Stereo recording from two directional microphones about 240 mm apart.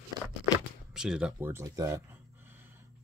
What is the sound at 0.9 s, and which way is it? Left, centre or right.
Speech, centre.